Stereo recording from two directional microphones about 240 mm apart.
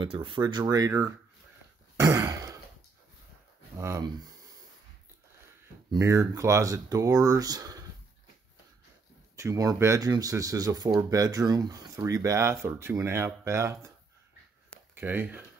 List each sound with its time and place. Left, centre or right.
0.0 s speech: right
2.0 s throat clearing: centre
3.7 s speech: centre
5.9 s speech: centre
9.4 s speech: centre
15.0 s speech: centre